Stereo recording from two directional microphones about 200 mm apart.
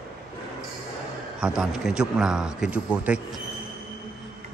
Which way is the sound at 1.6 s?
5° right (ahead or behind).